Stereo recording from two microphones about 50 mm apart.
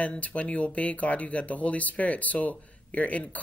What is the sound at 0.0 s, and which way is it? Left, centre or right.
Speech, left.